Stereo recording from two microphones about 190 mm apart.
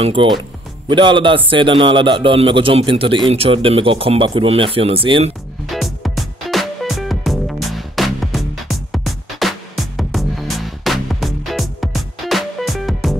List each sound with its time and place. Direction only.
0.0 s a man's voice: 25° right (ahead or behind)
5.7 s music: centre (ahead or behind)